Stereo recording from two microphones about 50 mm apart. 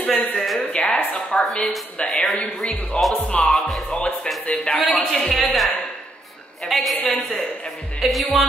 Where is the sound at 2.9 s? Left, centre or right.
Left.